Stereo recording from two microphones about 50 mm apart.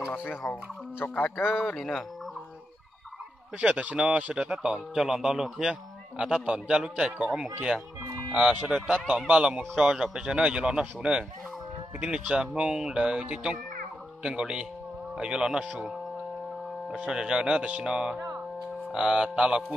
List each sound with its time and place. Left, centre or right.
0.1 s speech: left
1.7 s speech: centre
3.5 s speech: right
4.5 s speech: centre
5.6 s speech: centre
16.9 s speech: centre